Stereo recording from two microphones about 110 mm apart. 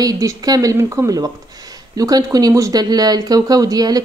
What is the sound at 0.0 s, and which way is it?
Speech, 30° right (ahead or behind).